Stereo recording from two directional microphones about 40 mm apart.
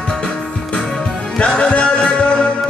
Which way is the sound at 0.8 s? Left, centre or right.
Centre.